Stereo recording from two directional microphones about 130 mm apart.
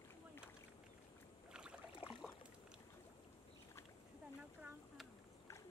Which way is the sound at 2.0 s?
40° left (ahead or behind).